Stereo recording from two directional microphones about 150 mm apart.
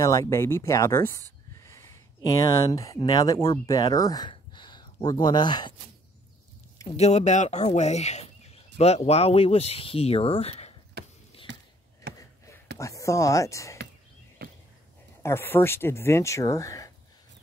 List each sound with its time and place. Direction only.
0.0 s speech: 20° left (ahead or behind)
1.6 s a sound: 20° left (ahead or behind)
3.0 s speech: 25° left (ahead or behind)
7.0 s speech: 50° left (ahead or behind)
12.7 s speech: 20° left (ahead or behind)
14.4 s a sound: 90° right
15.2 s speech: 15° left (ahead or behind)